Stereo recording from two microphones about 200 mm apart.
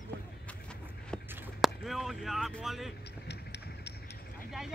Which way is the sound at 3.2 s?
55° left (ahead or behind).